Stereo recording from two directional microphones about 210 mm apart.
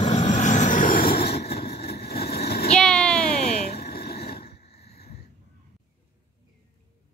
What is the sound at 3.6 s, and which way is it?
Vehicle, 45° left (ahead or behind).